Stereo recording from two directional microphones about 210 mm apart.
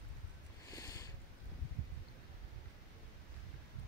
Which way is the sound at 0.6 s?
15° left (ahead or behind).